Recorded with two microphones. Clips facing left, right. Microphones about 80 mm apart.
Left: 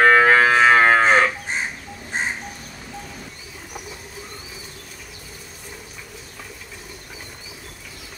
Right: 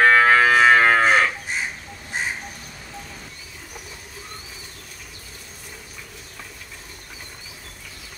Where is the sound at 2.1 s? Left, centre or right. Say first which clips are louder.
Left 2 dB; left.